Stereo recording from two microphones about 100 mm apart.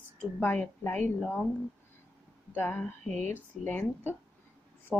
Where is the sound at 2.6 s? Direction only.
20° left (ahead or behind).